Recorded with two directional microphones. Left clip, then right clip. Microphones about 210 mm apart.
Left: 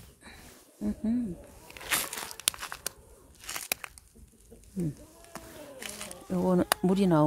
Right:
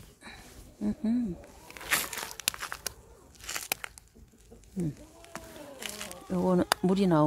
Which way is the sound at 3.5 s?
30° left (ahead or behind).